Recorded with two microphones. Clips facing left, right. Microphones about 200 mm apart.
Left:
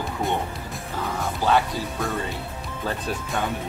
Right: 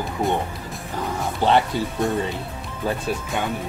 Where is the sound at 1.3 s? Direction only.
25° right (ahead or behind).